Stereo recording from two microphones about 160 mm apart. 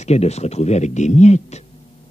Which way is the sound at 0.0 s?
45° left (ahead or behind).